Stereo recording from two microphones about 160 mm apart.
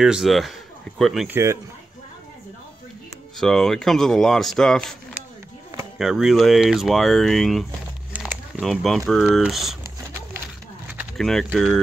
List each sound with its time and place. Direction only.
0.0 s speech: centre (ahead or behind)
1.2 s speech: 15° right (ahead or behind)
3.3 s speech: 5° left (ahead or behind)
5.9 s speech: centre (ahead or behind)
11.1 s speech: 5° left (ahead or behind)